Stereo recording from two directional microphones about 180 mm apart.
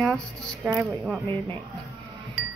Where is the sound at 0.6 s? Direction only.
10° right (ahead or behind).